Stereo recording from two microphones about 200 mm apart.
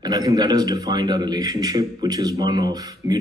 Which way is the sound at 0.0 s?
20° right (ahead or behind).